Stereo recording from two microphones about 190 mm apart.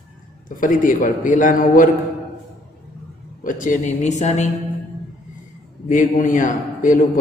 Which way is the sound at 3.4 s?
45° left (ahead or behind).